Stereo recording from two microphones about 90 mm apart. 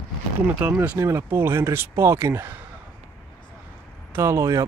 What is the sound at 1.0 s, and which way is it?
Speech, 25° right (ahead or behind).